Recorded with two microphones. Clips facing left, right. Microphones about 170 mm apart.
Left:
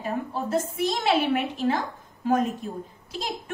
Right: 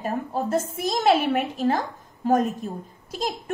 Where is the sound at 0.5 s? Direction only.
45° right (ahead or behind).